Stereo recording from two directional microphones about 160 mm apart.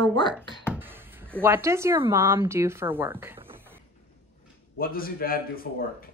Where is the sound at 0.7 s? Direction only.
15° right (ahead or behind).